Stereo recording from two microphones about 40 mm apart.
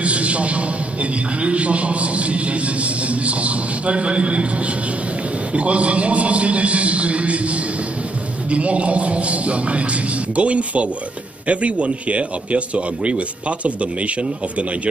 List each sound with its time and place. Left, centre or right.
0.0 s a sound: right
1.4 s a man's voice: right
5.5 s a man's voice: right